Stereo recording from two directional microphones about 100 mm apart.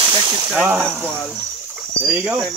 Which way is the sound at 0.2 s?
35° right (ahead or behind).